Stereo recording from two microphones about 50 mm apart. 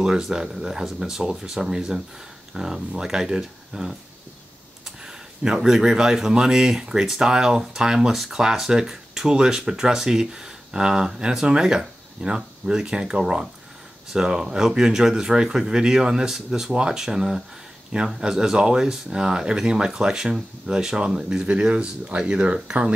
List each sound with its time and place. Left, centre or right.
0.0 s speech: centre